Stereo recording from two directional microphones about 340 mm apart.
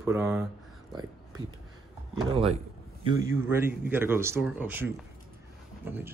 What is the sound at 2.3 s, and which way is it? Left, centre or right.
Speech, centre.